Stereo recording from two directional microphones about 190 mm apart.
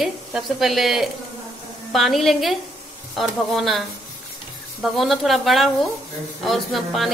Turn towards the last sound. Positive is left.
turn(degrees=0)  # may be behind; listen again after turning